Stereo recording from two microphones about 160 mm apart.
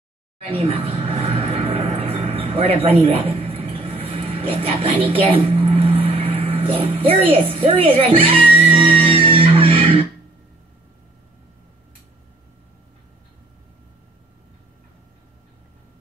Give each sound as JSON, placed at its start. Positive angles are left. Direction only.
{"t": 0.5, "sound": "speech", "side_deg": -40}